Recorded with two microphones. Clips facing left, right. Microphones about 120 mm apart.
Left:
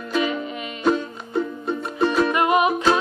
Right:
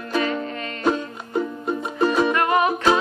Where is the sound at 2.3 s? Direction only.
15° left (ahead or behind).